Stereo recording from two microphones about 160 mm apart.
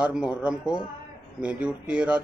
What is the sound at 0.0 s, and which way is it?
Speech, 5° right (ahead or behind).